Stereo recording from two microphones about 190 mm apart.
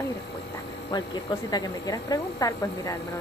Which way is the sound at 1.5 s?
20° left (ahead or behind).